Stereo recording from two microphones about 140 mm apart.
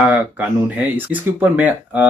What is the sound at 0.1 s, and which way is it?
Speech, 10° right (ahead or behind).